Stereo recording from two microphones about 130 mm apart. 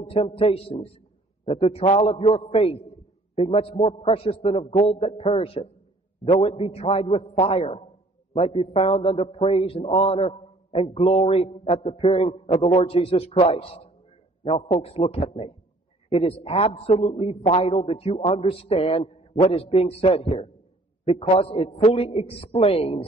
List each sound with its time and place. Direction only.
0.1 s a man's voice: 50° left (ahead or behind)